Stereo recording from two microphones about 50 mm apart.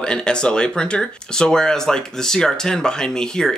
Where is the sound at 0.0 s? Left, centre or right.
Centre.